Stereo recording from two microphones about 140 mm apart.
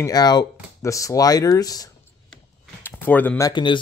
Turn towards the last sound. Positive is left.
turn(degrees=35)  # may be behind; listen again after turning